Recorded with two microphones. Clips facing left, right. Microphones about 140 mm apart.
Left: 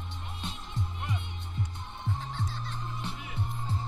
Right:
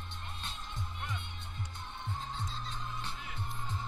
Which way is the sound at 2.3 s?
70° left (ahead or behind).